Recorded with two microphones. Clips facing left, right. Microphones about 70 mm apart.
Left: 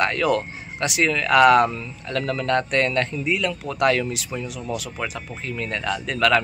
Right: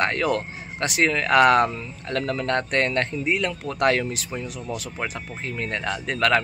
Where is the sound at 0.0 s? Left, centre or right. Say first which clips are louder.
Left 2 dB; right.